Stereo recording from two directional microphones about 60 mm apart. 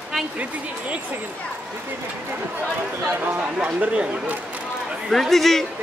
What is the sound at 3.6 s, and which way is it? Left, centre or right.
Speech, right.